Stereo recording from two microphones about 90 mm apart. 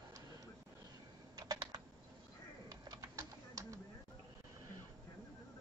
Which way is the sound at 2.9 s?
40° right (ahead or behind).